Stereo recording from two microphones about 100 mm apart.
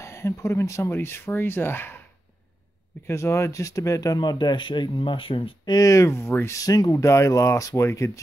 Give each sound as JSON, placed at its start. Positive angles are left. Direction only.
{"t": 0.0, "sound": "speech", "side_deg": 30}
{"t": 3.1, "sound": "speech", "side_deg": 25}
{"t": 5.7, "sound": "speech", "side_deg": 35}